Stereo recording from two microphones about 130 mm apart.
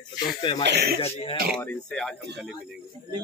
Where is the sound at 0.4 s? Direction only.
40° left (ahead or behind).